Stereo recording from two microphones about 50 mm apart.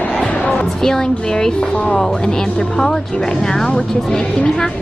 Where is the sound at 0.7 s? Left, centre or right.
Centre.